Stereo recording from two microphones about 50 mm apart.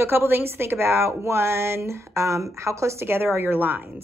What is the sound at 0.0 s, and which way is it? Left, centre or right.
A woman's voice, right.